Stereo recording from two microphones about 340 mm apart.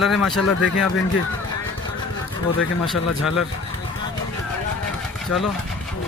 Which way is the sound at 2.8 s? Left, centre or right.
Centre.